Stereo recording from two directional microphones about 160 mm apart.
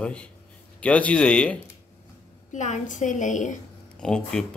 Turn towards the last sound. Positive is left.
turn(degrees=5)  # may be behind; listen again after turning